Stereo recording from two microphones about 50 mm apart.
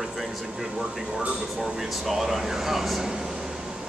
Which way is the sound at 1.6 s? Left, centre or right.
Centre.